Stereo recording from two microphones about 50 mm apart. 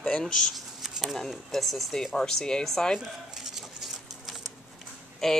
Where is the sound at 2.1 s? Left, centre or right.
Centre.